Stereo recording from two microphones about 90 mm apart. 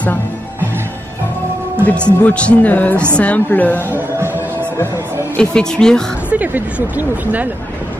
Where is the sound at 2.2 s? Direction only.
15° left (ahead or behind).